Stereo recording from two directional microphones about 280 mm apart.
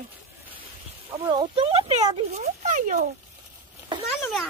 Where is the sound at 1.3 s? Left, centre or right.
Centre.